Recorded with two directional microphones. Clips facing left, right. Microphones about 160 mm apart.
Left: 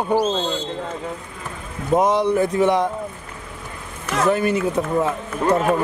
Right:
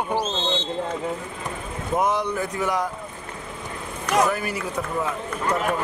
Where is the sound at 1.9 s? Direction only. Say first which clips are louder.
Left 6 dB; 30° left (ahead or behind).